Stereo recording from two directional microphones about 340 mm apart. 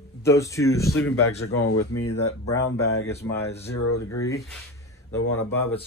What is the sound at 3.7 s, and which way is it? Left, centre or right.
Speech, left.